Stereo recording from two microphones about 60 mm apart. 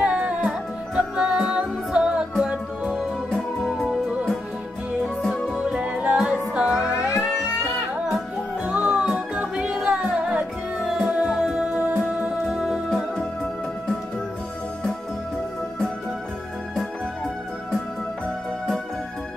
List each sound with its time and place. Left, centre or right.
0.0 s music: right
5.5 s music: centre
7.1 s music: left
8.6 s music: right